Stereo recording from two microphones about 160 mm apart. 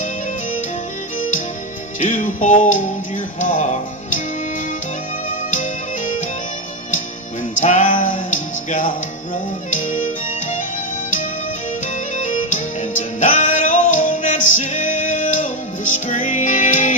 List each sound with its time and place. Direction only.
2.0 s music: 55° left (ahead or behind)
3.3 s speech: 55° left (ahead or behind)
5.5 s music: 55° left (ahead or behind)
7.6 s music: 50° left (ahead or behind)
12.2 s music: 50° left (ahead or behind)